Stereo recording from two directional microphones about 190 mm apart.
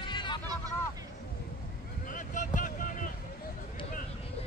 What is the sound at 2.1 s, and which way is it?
Vehicle, 45° left (ahead or behind).